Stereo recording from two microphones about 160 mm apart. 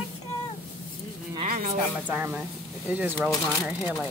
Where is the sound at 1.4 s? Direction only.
55° right (ahead or behind).